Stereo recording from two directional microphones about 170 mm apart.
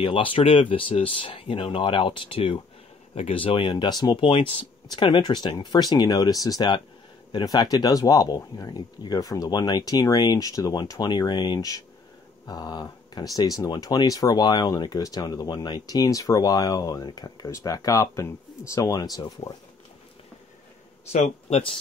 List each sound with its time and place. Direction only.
0.0 s speech: 30° left (ahead or behind)
21.1 s speech: 40° left (ahead or behind)